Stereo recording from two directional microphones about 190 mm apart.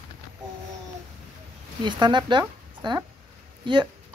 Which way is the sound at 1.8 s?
25° right (ahead or behind).